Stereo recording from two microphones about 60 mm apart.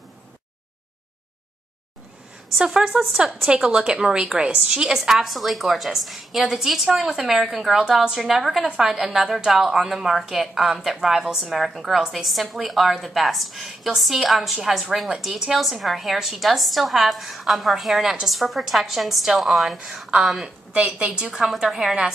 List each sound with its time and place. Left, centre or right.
2.6 s a woman's voice: centre
20.7 s a woman's voice: centre
21.3 s a woman's voice: centre